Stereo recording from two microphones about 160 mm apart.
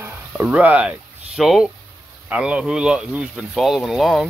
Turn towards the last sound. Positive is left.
turn(degrees=0)  # may be behind; listen again after turning